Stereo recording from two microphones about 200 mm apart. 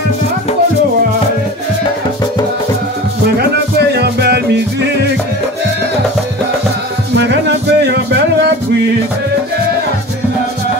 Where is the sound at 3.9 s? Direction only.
55° right (ahead or behind).